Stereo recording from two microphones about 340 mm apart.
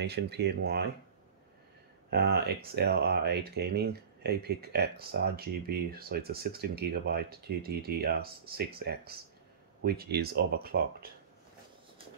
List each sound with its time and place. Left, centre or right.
0.0 s speech: right
2.0 s speech: right